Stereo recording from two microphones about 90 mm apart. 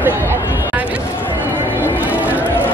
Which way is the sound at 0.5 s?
20° right (ahead or behind).